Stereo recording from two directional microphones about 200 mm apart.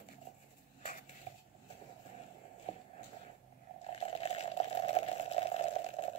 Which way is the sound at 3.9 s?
30° left (ahead or behind).